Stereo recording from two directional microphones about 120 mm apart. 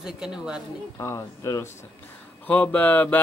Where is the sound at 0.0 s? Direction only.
5° right (ahead or behind).